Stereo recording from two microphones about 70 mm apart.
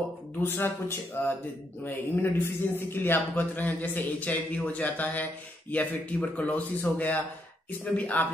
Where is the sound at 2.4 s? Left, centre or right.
Left.